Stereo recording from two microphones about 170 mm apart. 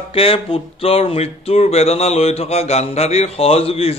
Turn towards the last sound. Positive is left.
turn(degrees=35)  # may be behind; listen again after turning